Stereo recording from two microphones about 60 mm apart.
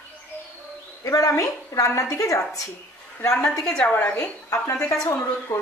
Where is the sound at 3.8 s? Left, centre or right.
Left.